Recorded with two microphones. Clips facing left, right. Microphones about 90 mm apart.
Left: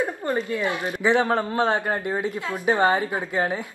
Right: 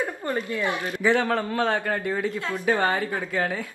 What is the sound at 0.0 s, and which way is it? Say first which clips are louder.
A man's voice: left 3 dB; 20° left (ahead or behind).